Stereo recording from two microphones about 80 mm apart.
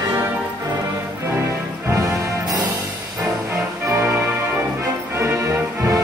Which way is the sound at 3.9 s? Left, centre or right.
Right.